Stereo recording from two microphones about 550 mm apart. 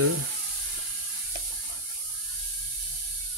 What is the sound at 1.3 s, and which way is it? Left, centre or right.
Sizzle, right.